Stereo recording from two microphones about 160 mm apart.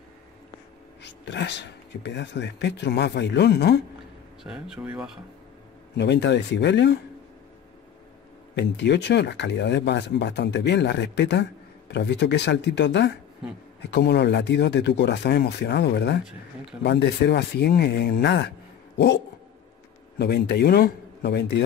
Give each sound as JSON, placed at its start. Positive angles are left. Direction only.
{"t": 1.0, "sound": "speech", "side_deg": 90}
{"t": 4.4, "sound": "speech", "side_deg": -5}
{"t": 5.9, "sound": "speech", "side_deg": 90}
{"t": 8.5, "sound": "speech", "side_deg": 90}
{"t": 20.2, "sound": "speech", "side_deg": 90}